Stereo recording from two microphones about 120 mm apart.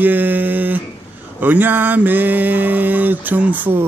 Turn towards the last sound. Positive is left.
turn(degrees=-15)  # may be behind; listen again after turning